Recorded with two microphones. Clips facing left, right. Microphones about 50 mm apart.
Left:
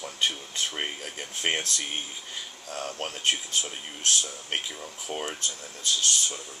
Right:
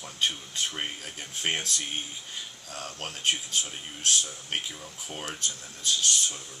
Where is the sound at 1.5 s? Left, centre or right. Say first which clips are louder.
Left 2 dB; centre.